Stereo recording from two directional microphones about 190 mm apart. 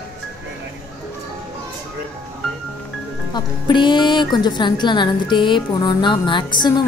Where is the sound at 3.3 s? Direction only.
25° left (ahead or behind).